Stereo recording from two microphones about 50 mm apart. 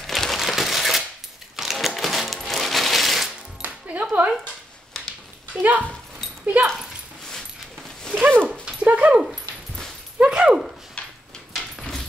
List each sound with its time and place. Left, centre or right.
0.0 s crumpling: centre
1.6 s coin: centre
3.6 s music: right
5.6 s speech: right
8.1 s dog: right
8.8 s dog: right
10.1 s speech: right
11.0 s drawer open or close: centre